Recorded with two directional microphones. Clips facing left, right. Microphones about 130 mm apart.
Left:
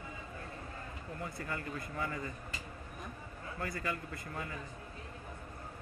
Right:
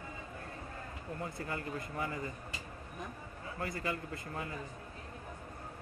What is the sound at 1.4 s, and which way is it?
Speech, 25° right (ahead or behind).